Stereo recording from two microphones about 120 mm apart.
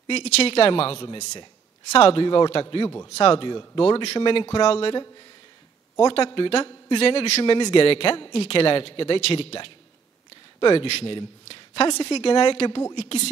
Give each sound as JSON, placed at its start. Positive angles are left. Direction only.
{"t": 0.0, "sound": "a man's voice", "side_deg": 55}
{"t": 1.9, "sound": "a man's voice", "side_deg": 55}